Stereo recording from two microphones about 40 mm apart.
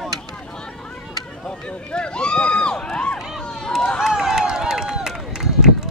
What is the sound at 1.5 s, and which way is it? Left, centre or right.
Run, left.